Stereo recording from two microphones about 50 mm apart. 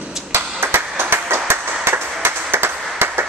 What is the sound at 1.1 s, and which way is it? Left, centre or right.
Train, right.